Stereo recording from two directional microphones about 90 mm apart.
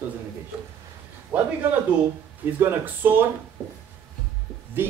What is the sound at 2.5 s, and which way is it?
Speech, 25° right (ahead or behind).